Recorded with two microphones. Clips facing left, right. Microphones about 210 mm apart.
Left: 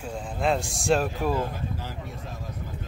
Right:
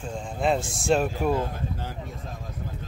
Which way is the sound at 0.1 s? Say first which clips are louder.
Right 1 dB; centre (ahead or behind).